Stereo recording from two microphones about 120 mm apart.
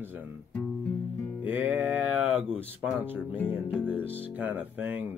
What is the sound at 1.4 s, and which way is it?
Speech, 15° right (ahead or behind).